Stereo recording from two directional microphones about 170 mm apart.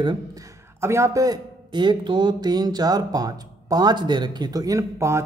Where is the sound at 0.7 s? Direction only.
15° right (ahead or behind).